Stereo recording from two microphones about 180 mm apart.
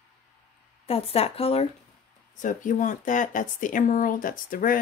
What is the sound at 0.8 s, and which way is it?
Speech, 35° left (ahead or behind).